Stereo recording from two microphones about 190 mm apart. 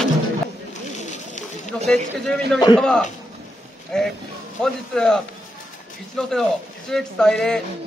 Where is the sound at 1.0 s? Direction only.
40° left (ahead or behind).